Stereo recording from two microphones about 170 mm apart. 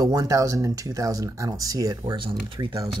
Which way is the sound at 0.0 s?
20° right (ahead or behind).